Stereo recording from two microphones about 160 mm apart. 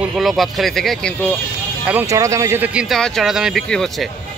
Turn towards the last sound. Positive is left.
turn(degrees=0)  # may be behind; listen again after turning